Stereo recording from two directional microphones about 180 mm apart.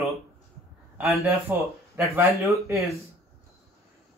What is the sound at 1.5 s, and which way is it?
A man's voice, 10° right (ahead or behind).